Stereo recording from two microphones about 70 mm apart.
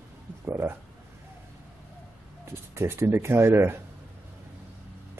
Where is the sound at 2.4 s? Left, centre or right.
Right.